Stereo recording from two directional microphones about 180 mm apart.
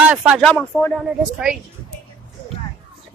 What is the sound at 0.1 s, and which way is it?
Speech, 5° right (ahead or behind).